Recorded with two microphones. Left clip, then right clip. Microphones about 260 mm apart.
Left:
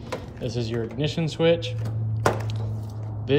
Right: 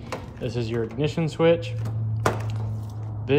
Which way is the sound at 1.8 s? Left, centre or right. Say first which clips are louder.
Left 1 dB; centre.